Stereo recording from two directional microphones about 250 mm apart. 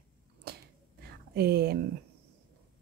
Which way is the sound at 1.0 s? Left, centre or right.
Right.